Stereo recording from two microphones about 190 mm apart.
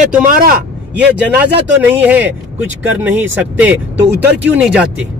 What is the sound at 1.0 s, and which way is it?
Speech, 60° right (ahead or behind).